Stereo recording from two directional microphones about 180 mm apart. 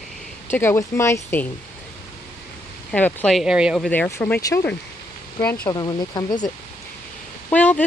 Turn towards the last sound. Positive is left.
turn(degrees=10)  # may be behind; listen again after turning